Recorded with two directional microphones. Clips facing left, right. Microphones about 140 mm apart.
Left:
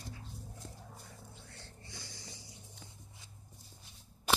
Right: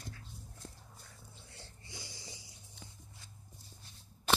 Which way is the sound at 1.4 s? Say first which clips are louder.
Left 2 dB; 10° right (ahead or behind).